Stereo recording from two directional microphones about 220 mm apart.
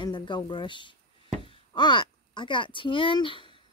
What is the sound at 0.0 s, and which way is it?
Speech, 20° left (ahead or behind).